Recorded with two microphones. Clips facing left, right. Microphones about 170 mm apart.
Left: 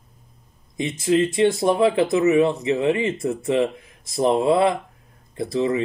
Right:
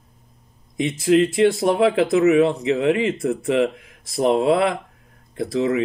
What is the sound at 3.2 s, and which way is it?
Speech, 30° left (ahead or behind).